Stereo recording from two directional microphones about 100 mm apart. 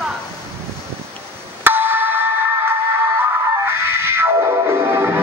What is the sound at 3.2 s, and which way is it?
Music, 25° right (ahead or behind).